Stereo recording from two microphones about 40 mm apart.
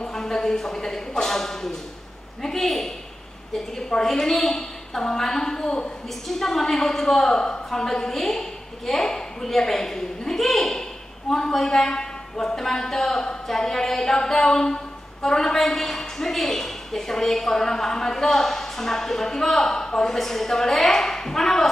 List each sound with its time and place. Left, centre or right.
0.0 s a sound: centre
2.4 s a man's voice: centre
6.0 s a woman's voice: centre